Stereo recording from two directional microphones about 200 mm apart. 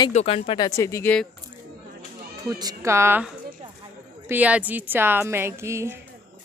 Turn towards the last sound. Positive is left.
turn(degrees=-15)  # may be behind; listen again after turning